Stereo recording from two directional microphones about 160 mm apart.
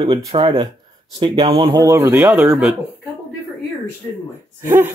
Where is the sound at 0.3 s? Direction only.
30° right (ahead or behind).